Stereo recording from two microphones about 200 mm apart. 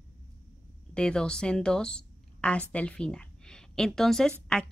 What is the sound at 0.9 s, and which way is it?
A woman's voice, 5° left (ahead or behind).